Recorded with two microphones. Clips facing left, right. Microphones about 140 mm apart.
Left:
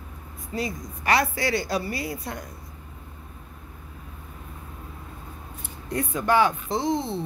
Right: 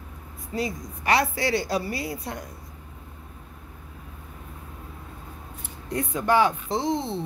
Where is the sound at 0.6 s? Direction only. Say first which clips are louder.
Right 1 dB; 25° right (ahead or behind).